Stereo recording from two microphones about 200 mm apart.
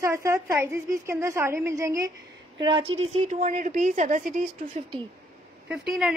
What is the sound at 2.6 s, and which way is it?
A woman's voice, 25° right (ahead or behind).